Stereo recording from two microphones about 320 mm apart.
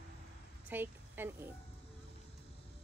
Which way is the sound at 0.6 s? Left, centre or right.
Centre.